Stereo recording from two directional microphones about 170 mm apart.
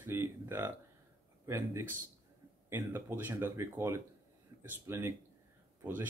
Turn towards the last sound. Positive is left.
turn(degrees=-10)  # may be behind; listen again after turning